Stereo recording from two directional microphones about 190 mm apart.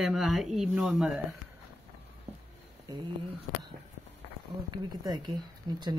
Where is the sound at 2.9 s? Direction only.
20° right (ahead or behind).